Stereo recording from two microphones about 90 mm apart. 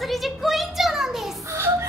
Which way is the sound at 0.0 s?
Centre (ahead or behind).